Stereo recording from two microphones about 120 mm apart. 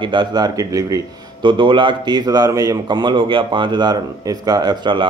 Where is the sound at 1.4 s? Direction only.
45° right (ahead or behind).